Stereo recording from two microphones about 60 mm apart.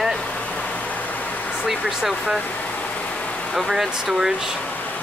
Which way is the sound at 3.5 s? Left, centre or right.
Centre.